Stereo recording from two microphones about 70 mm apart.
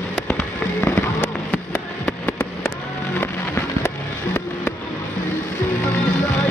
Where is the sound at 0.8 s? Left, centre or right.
Left.